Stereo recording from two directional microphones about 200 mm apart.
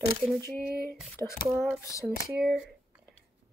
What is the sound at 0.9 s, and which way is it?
Speech, centre (ahead or behind).